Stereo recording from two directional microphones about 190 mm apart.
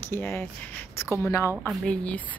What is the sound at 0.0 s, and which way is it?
Speech, 10° left (ahead or behind).